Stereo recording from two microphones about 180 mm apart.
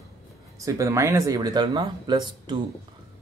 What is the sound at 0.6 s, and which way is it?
Speech, 15° right (ahead or behind).